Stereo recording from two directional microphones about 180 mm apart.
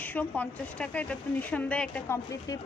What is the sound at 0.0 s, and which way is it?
A woman's voice, 10° left (ahead or behind).